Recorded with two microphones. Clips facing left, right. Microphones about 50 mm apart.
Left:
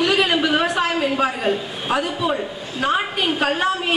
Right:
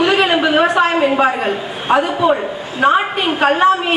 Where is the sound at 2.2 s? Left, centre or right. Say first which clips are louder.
Right 7 dB; right.